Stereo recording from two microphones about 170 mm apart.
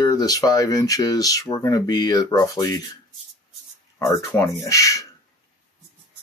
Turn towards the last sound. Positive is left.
turn(degrees=20)  # may be behind; listen again after turning